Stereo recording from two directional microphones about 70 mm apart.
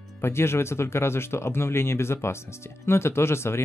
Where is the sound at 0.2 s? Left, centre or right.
Left.